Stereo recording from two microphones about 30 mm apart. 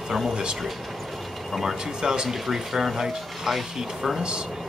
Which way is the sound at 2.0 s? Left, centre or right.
Right.